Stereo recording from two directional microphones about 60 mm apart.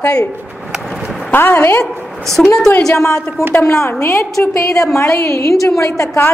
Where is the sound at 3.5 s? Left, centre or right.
Left.